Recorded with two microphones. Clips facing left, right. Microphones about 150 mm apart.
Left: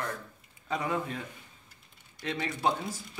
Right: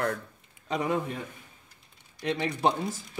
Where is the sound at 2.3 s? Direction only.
20° right (ahead or behind).